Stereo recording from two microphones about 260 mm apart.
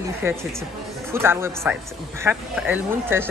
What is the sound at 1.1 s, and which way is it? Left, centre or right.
Speech, centre.